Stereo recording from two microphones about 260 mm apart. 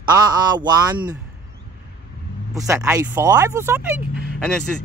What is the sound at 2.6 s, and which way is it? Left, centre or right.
Speech, centre.